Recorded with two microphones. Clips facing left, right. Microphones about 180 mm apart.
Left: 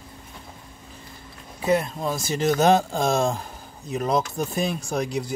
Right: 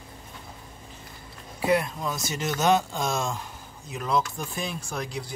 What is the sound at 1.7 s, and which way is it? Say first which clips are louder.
Speech: left 2 dB; 25° left (ahead or behind).